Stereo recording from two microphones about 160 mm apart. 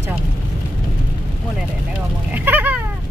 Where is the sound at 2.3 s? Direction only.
10° right (ahead or behind).